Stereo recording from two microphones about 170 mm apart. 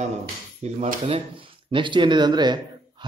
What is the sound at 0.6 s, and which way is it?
Speech, 40° right (ahead or behind).